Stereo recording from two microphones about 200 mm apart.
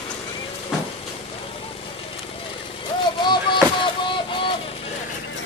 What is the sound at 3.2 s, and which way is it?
Vehicle, 25° left (ahead or behind).